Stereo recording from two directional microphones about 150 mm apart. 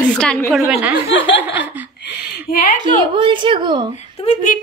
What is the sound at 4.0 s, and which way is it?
Speech, 40° left (ahead or behind).